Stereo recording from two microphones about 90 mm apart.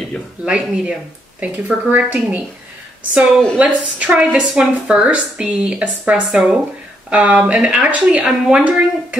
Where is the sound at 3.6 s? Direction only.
15° right (ahead or behind).